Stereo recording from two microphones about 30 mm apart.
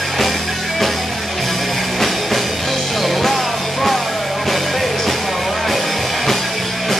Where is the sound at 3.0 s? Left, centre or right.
Centre.